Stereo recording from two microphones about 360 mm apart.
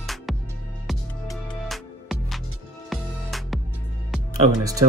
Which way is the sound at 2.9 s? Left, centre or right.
Centre.